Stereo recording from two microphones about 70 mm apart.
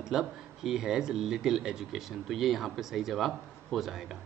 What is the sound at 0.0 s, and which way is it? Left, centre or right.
Speech, centre.